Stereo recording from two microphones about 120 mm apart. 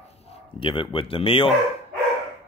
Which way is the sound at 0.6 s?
45° left (ahead or behind).